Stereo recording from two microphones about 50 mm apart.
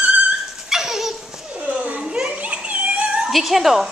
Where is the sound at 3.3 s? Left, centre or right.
Centre.